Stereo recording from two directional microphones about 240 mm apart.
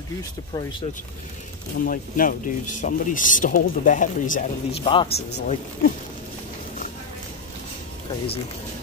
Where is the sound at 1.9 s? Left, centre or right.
Left.